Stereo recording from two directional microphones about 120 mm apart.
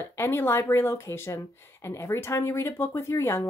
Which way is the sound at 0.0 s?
20° left (ahead or behind).